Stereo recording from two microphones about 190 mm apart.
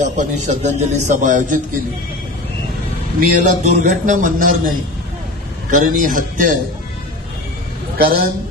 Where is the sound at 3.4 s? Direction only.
40° right (ahead or behind).